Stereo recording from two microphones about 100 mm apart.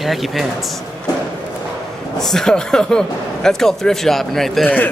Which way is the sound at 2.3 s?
5° left (ahead or behind).